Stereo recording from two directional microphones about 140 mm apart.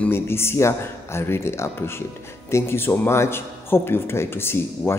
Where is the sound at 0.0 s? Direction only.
15° left (ahead or behind).